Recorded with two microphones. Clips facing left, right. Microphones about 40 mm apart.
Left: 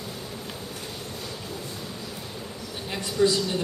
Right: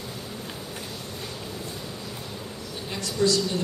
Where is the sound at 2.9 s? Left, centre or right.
Centre.